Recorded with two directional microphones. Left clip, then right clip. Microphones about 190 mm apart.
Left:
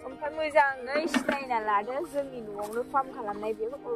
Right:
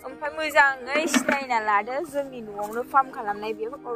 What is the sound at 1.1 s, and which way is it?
Speech, 40° right (ahead or behind).